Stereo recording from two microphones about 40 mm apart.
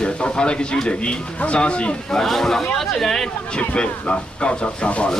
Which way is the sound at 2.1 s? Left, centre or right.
Centre.